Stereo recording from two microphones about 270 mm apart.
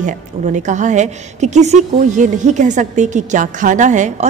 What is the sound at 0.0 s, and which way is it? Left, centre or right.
A woman's voice, right.